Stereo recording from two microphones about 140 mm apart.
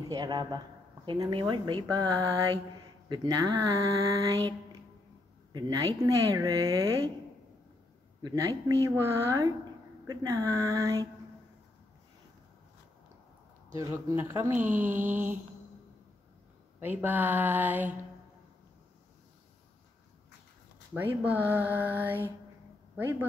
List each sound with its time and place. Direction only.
0.1 s speech: 30° right (ahead or behind)
3.1 s speech: 25° right (ahead or behind)
8.2 s speech: 25° right (ahead or behind)
13.7 s speech: 20° right (ahead or behind)
16.8 s speech: 15° right (ahead or behind)
20.9 s speech: 15° right (ahead or behind)